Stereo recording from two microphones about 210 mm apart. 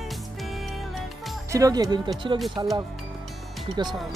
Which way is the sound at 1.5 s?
15° right (ahead or behind).